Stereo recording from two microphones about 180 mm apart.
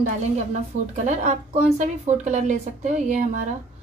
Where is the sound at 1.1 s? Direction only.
40° right (ahead or behind).